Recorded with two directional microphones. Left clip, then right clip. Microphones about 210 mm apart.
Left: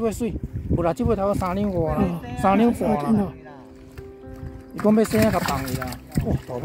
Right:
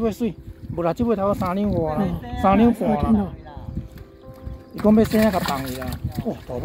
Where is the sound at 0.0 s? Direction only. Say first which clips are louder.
Right 1 dB; centre (ahead or behind).